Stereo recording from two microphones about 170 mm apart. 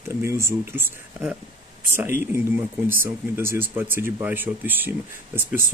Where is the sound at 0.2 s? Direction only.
15° right (ahead or behind).